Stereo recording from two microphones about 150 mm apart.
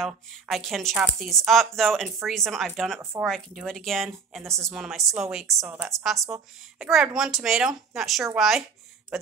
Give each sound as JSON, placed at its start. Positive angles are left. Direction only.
{"t": 0.0, "sound": "speech", "side_deg": 0}